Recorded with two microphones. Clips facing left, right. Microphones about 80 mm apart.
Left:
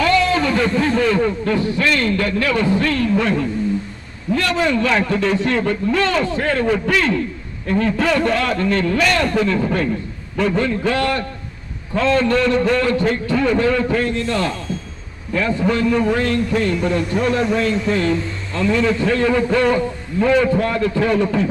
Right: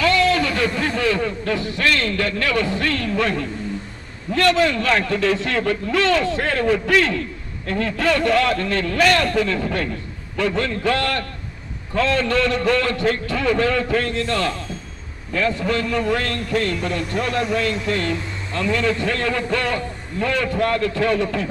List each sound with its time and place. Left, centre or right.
0.0 s a man's voice: centre
4.6 s a man's voice: centre
6.7 s a man's voice: centre
17.2 s a man's voice: centre